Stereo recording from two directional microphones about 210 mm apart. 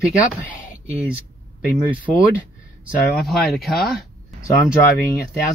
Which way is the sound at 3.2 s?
Centre (ahead or behind).